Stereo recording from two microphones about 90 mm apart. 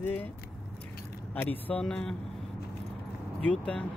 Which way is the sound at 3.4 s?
15° left (ahead or behind).